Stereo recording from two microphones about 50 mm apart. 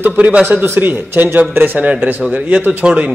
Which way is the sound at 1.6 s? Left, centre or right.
Right.